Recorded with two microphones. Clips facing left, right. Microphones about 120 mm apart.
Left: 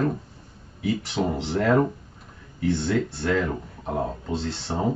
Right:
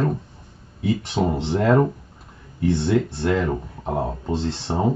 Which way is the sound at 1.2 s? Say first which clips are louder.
Right 4 dB; 20° right (ahead or behind).